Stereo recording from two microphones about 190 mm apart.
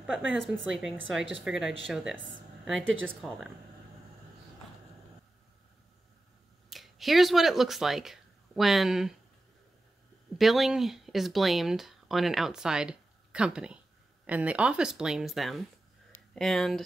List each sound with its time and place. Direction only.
0.4 s speech: centre (ahead or behind)
3.2 s speech: centre (ahead or behind)
6.7 s speech: centre (ahead or behind)
10.3 s speech: centre (ahead or behind)